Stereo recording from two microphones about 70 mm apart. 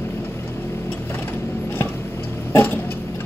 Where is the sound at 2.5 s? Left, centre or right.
Left.